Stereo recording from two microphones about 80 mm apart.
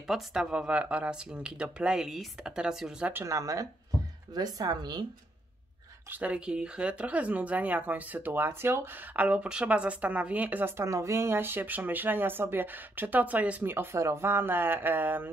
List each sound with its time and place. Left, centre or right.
0.0 s speech: centre
3.1 s speech: right
4.3 s a woman's voice: right
6.0 s speech: right
9.1 s speech: centre
10.8 s speech: right